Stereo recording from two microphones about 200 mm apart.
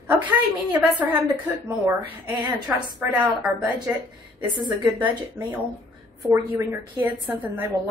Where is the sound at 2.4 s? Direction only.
5° right (ahead or behind).